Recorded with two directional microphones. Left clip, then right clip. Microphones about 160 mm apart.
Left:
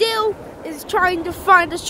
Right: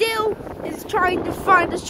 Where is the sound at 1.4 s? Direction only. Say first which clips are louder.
Left 3 dB; 15° left (ahead or behind).